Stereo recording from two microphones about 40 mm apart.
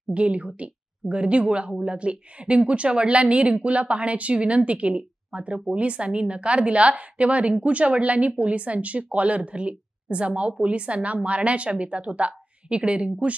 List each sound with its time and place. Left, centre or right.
0.1 s a woman's voice: right